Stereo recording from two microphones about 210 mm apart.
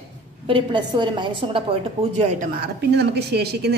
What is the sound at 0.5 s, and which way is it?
A woman's voice, 25° right (ahead or behind).